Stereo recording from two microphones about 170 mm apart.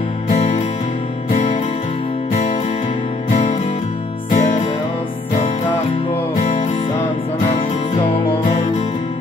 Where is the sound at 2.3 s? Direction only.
45° left (ahead or behind).